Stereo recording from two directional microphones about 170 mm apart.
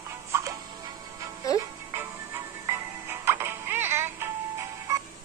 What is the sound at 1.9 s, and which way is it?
Music, 15° right (ahead or behind).